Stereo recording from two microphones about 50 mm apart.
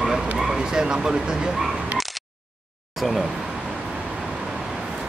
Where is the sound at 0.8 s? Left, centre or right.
Centre.